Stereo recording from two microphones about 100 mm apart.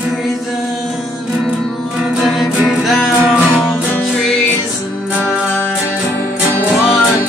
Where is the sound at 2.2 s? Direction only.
Centre (ahead or behind).